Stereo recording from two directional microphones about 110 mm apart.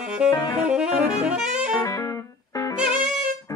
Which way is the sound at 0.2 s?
10° right (ahead or behind).